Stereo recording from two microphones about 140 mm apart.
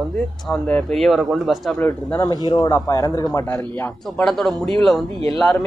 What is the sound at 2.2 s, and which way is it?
Speech, 30° left (ahead or behind).